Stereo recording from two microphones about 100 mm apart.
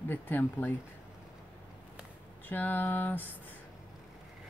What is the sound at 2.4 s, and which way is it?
Speech, 20° left (ahead or behind).